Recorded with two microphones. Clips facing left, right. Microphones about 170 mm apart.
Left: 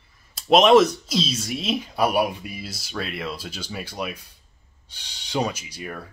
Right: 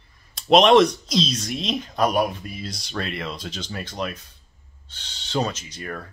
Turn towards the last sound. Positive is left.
turn(degrees=5)  # may be behind; listen again after turning